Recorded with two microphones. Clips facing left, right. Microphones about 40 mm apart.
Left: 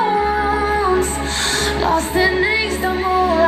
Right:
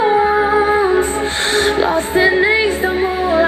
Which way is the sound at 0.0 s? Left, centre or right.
Right.